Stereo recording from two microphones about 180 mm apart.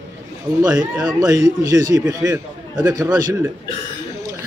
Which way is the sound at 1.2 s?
20° right (ahead or behind).